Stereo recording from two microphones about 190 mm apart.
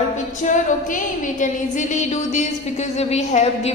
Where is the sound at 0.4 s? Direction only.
40° left (ahead or behind).